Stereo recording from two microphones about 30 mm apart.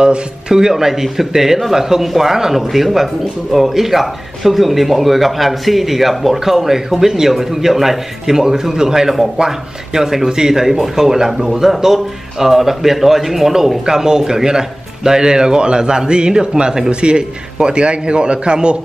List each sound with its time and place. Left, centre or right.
0.5 s a man's voice: centre
9.9 s a man's voice: centre; by 18.8 s right